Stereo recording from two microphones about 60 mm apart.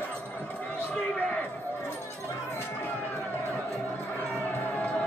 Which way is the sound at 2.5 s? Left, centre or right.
Left.